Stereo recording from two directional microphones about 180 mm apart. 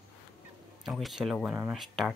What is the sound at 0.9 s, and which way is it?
Speech, centre (ahead or behind).